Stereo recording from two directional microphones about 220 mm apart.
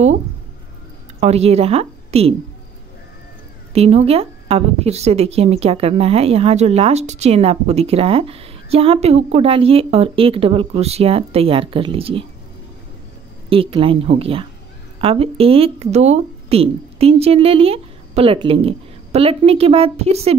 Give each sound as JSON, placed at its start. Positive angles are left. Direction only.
{"t": 1.2, "sound": "a woman's voice", "side_deg": -30}
{"t": 3.7, "sound": "speech", "side_deg": -30}
{"t": 13.5, "sound": "speech", "side_deg": -25}